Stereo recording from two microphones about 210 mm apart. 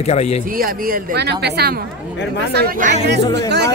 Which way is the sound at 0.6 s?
45° right (ahead or behind).